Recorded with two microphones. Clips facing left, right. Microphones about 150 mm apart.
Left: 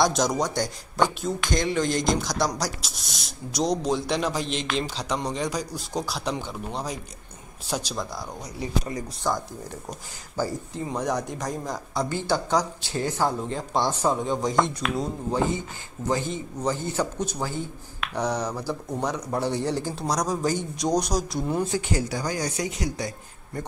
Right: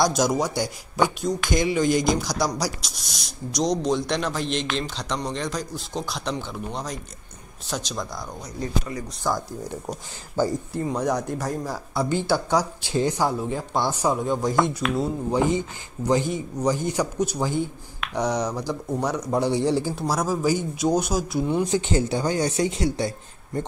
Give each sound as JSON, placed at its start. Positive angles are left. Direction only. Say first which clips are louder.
{"t": 0.0, "sound": "a man's voice", "louder": "right 1 dB", "side_deg": -5}
{"t": 9.3, "sound": "speech", "louder": "right 1 dB", "side_deg": -5}
{"t": 11.0, "sound": "speech", "louder": "right 1 dB", "side_deg": -10}
{"t": 15.3, "sound": "speech", "louder": "right 3 dB", "side_deg": -15}
{"t": 21.6, "sound": "speech", "louder": "right 4 dB", "side_deg": -25}